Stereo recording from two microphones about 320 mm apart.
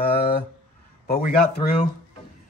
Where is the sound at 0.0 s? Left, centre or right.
Left.